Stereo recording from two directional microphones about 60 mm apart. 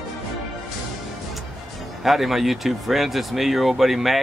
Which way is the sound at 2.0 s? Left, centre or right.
Centre.